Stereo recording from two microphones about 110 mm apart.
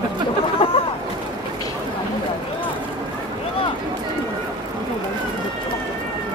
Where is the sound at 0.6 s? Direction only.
55° left (ahead or behind).